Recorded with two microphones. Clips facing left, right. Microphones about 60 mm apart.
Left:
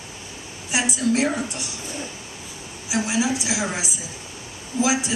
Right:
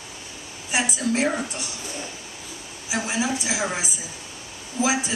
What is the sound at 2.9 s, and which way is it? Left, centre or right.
Speech, centre.